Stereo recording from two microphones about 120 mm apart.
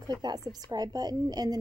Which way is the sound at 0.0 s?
35° right (ahead or behind).